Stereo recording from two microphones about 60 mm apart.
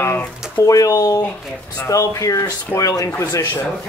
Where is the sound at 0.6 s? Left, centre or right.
Left.